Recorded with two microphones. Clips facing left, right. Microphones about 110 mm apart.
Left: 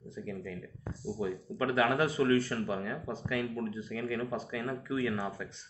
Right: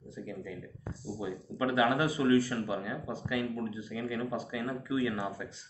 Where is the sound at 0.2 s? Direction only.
15° right (ahead or behind).